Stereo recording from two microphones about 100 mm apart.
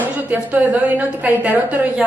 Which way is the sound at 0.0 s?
15° right (ahead or behind).